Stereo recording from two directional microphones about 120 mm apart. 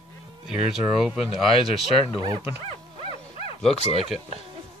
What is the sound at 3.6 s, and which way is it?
Speech, 5° left (ahead or behind).